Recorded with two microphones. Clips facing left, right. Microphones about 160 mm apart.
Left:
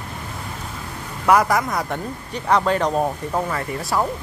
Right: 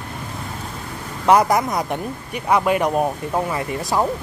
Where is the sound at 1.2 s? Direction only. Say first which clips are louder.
Right 2 dB; 20° right (ahead or behind).